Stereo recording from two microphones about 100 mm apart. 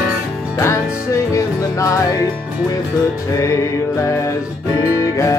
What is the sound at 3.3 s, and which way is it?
Music, 30° left (ahead or behind).